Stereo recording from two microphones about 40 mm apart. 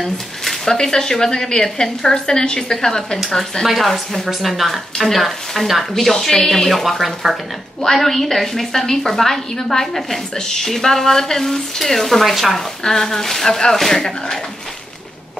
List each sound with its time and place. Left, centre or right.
0.0 s a sound: centre
0.7 s a woman's voice: centre
3.6 s a woman's voice: centre